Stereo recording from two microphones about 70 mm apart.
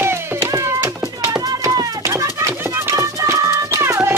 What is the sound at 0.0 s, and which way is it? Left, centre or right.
Cat, right.